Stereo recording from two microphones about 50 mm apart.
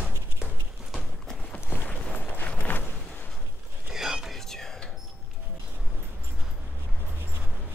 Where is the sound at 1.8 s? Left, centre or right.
Left.